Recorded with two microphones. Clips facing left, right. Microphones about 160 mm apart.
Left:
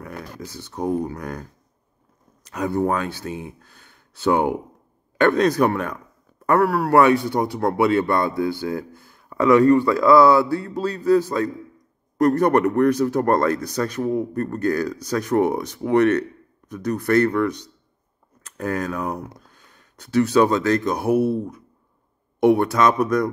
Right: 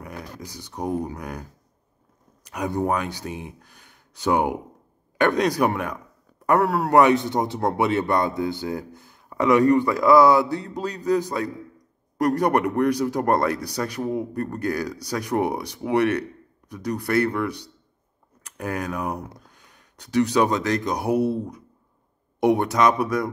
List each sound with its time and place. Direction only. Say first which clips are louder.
0.0 s a man's voice: left 2 dB; 15° right (ahead or behind)